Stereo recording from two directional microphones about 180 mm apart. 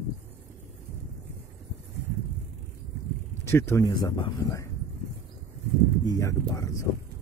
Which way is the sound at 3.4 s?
15° left (ahead or behind).